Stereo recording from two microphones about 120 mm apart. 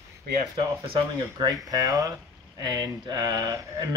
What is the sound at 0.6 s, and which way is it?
Speech, 40° right (ahead or behind).